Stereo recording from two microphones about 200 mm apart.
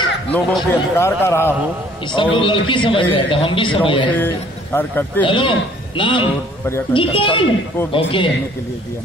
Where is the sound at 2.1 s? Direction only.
25° left (ahead or behind).